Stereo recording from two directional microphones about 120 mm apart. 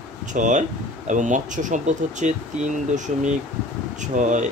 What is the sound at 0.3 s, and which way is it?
Speech, 90° right.